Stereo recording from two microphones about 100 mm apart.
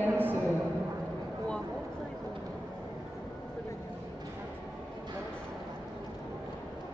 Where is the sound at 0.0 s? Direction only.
20° right (ahead or behind).